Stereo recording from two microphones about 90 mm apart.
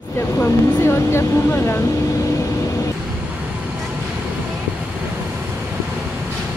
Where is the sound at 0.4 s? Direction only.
25° left (ahead or behind).